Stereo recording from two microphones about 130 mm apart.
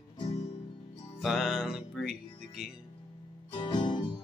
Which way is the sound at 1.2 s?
Centre (ahead or behind).